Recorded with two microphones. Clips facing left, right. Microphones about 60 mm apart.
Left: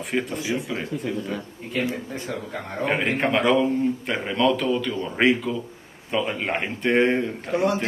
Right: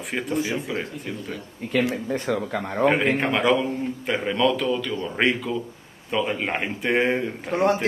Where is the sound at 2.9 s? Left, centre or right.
Centre.